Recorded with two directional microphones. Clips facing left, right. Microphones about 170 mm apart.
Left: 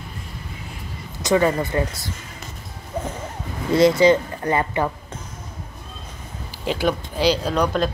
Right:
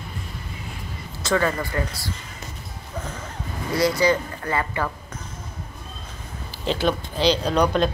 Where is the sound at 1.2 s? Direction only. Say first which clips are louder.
Left 4 dB; 20° left (ahead or behind).